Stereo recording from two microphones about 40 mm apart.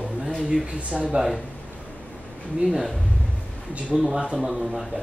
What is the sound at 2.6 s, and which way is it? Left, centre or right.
Speech, centre.